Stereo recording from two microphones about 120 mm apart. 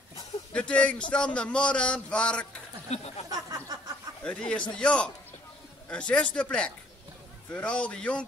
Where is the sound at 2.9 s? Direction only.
65° left (ahead or behind).